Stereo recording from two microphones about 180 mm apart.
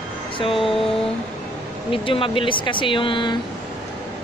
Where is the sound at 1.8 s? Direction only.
30° left (ahead or behind).